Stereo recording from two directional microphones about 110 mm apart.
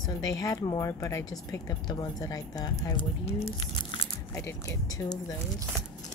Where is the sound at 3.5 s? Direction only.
55° left (ahead or behind).